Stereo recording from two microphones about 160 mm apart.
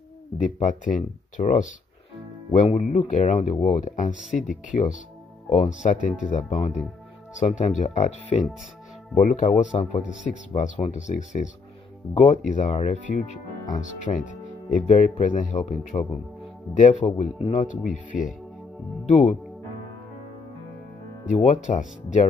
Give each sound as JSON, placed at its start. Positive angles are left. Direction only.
{"t": 0.4, "sound": "speech", "side_deg": 50}
{"t": 12.4, "sound": "speech", "side_deg": 50}
{"t": 21.5, "sound": "speech", "side_deg": 50}